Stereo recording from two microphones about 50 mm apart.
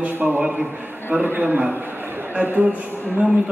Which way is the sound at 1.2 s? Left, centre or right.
Right.